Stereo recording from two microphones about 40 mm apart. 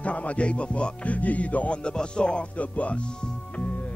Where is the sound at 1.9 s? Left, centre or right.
Left.